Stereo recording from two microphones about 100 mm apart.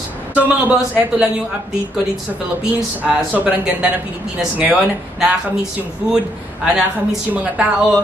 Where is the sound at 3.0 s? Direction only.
15° right (ahead or behind).